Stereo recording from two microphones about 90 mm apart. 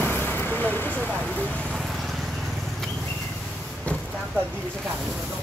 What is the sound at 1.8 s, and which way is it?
Vehicle, centre (ahead or behind).